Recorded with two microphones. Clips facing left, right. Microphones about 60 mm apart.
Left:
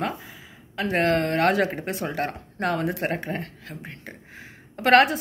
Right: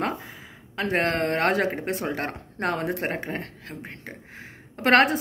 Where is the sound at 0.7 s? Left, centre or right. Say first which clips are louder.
Left 2 dB; right.